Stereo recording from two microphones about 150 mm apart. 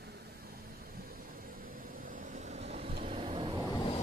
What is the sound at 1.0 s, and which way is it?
Vehicle, 75° right (ahead or behind).